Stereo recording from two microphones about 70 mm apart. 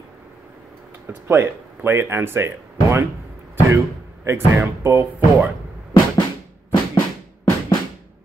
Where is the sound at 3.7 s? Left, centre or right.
Right.